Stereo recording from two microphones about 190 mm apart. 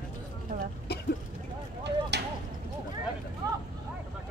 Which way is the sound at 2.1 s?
65° right (ahead or behind).